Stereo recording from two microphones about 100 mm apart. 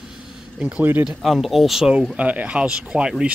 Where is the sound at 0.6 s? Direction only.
20° right (ahead or behind).